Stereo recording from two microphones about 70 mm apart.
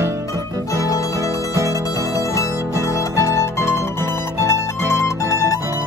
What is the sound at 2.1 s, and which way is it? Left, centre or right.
Music, left.